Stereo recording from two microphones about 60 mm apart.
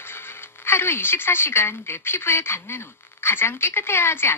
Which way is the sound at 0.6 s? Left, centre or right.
Left.